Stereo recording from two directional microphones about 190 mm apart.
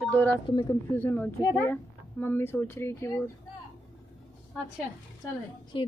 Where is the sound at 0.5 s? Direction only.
25° left (ahead or behind).